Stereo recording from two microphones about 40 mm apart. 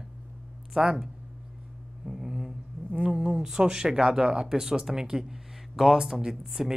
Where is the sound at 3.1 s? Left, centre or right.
Centre.